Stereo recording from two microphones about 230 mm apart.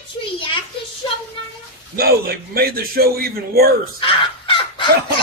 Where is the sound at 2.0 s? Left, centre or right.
Right.